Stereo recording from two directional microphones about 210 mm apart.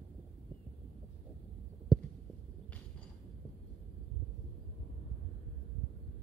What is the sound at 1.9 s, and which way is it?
Heart sounds, centre (ahead or behind).